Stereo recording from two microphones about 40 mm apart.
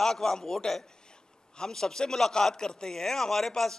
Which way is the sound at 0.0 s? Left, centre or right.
Centre.